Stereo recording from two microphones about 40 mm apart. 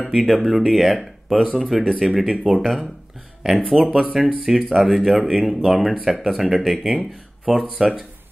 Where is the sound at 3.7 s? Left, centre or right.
Centre.